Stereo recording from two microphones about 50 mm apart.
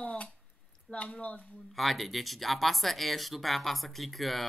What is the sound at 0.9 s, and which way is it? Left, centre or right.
Speech, left.